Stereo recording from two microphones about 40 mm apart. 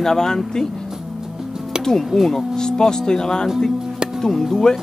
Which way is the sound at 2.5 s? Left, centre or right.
Centre.